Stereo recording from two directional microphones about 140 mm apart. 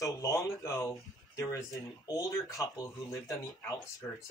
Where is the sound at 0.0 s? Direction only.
25° left (ahead or behind).